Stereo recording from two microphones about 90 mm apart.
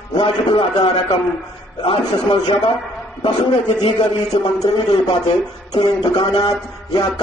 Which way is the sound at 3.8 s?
70° left (ahead or behind).